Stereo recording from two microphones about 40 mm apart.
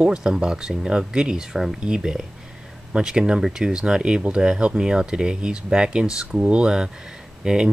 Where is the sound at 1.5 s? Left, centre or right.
Centre.